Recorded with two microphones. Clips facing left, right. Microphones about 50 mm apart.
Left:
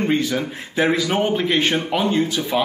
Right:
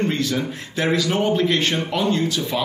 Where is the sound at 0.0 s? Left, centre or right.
Centre.